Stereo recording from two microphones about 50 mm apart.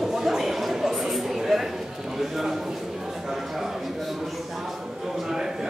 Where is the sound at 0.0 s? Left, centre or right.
Centre.